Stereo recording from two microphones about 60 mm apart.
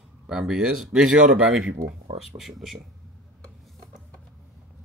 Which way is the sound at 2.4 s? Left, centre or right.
Centre.